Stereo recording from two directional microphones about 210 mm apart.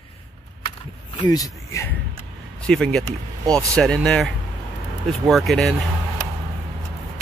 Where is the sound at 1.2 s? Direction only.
15° left (ahead or behind).